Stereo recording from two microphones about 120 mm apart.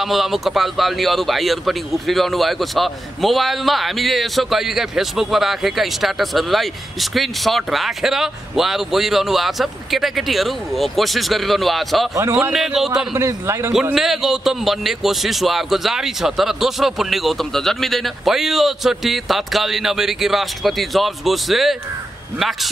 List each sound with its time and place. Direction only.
0.0 s speech: centre (ahead or behind)
13.1 s a man's voice: 20° right (ahead or behind)
13.9 s speech: 5° right (ahead or behind)